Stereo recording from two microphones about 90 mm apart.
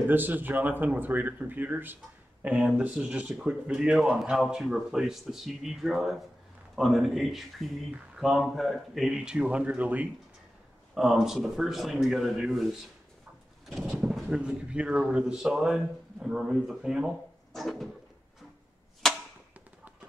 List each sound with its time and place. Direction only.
0.0 s speech: 20° right (ahead or behind)
11.0 s speech: 5° right (ahead or behind)
13.7 s speech: 5° right (ahead or behind)
19.0 s chop: 5° left (ahead or behind)